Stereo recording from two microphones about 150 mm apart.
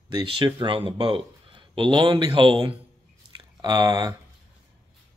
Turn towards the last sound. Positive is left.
turn(degrees=-25)  # may be behind; listen again after turning